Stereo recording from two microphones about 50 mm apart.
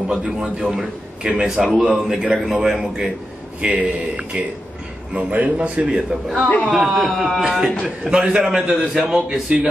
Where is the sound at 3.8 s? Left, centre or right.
Right.